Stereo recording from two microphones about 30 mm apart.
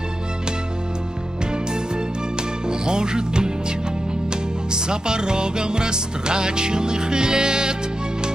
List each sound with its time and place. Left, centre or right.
2.7 s music: right